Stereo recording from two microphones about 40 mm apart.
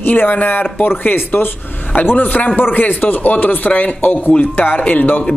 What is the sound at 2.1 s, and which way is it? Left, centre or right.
Speech, left.